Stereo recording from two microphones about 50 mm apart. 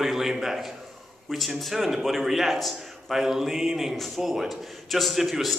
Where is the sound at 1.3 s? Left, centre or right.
Centre.